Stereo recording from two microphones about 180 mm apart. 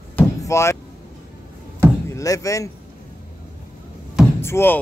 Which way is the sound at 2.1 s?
15° left (ahead or behind).